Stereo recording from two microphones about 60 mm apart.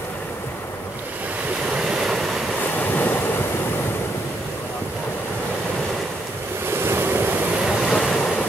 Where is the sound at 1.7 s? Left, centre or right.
Centre.